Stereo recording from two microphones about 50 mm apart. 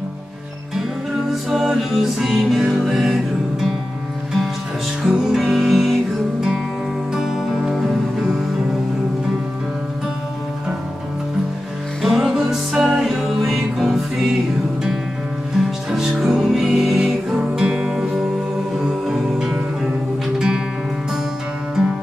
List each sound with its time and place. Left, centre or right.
1.5 s music: centre
2.6 s music: centre
5.0 s music: centre
7.2 s music: centre
12.0 s music: centre
12.7 s music: right
13.0 s music: centre
15.9 s music: centre
17.0 s music: right
17.6 s music: centre
20.3 s music: centre